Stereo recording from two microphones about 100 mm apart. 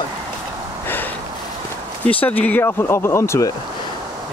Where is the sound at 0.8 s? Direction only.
20° left (ahead or behind).